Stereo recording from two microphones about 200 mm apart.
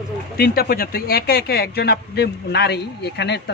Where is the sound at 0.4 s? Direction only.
50° left (ahead or behind).